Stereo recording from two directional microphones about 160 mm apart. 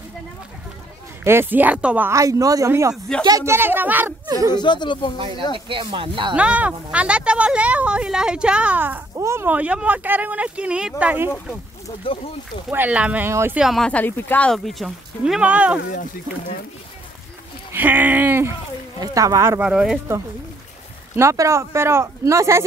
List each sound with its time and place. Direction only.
1.2 s speech: 15° right (ahead or behind)
4.3 s speech: 20° right (ahead or behind)
4.6 s speech: 30° left (ahead or behind)
5.7 s speech: 30° right (ahead or behind)
6.3 s speech: 10° right (ahead or behind)
12.0 s speech: 35° left (ahead or behind)
12.6 s speech: 10° right (ahead or behind)
13.6 s speech: centre (ahead or behind)
17.7 s speech: 10° right (ahead or behind)
19.6 s speech: 5° right (ahead or behind)
21.2 s speech: 20° right (ahead or behind)